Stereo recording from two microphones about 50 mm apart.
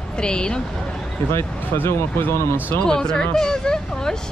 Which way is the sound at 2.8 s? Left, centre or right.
Centre.